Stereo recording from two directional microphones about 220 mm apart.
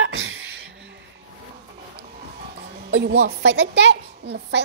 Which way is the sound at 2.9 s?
50° right (ahead or behind).